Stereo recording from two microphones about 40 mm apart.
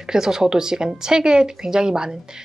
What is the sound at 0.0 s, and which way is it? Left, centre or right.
A woman's voice, centre.